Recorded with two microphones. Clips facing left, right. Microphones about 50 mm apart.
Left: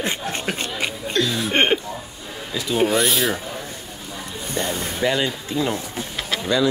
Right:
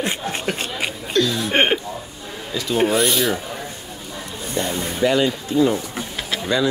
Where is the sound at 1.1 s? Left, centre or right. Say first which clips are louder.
Right 3 dB; centre.